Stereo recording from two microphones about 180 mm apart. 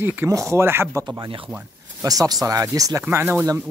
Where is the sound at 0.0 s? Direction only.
10° right (ahead or behind).